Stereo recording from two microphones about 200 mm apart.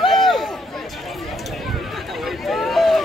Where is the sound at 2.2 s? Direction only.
Centre (ahead or behind).